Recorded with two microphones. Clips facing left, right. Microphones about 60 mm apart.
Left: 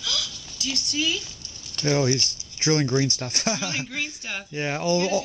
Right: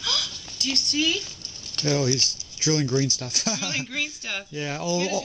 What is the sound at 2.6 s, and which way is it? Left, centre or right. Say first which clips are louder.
Speech: left 1 dB; left.